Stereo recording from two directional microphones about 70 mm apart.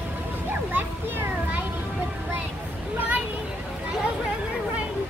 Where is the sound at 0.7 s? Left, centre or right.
Right.